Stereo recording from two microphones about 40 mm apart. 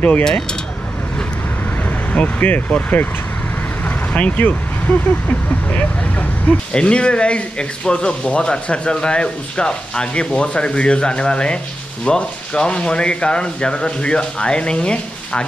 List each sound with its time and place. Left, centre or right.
0.2 s speech: centre
1.9 s speech: left